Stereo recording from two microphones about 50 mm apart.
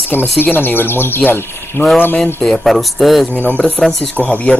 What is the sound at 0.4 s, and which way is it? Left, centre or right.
Speech, left.